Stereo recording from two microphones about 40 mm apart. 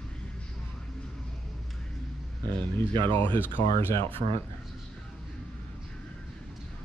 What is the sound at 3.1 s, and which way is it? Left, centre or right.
Speech, left.